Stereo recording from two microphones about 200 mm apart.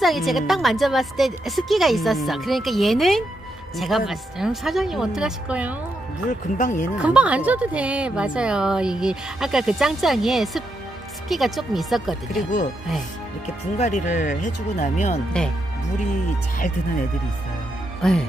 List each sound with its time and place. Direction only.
0.0 s a woman's voice: centre (ahead or behind)
6.6 s speech: 40° left (ahead or behind)
7.0 s a woman's voice: 5° right (ahead or behind)
13.7 s speech: 35° left (ahead or behind)
15.3 s a woman's voice: 5° left (ahead or behind)
16.5 s speech: 40° left (ahead or behind)